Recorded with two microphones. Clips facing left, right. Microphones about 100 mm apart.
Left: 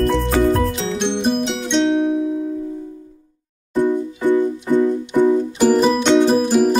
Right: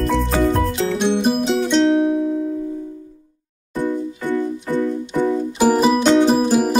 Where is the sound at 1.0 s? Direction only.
5° right (ahead or behind).